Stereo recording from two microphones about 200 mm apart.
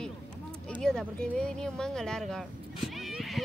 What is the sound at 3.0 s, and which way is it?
Music, centre (ahead or behind).